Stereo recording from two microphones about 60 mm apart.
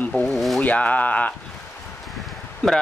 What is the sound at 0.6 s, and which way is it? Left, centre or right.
Speech, left.